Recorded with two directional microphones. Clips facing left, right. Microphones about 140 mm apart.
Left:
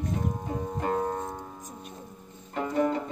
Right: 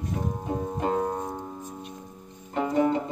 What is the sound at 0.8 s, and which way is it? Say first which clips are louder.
Music: right 2 dB; 15° right (ahead or behind).